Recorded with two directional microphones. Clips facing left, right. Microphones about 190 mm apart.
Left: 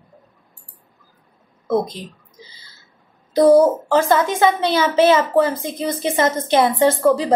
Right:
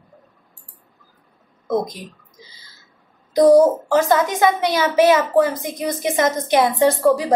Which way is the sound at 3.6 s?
15° right (ahead or behind).